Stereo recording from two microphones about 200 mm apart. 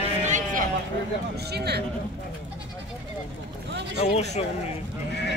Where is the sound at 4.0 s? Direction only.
30° left (ahead or behind).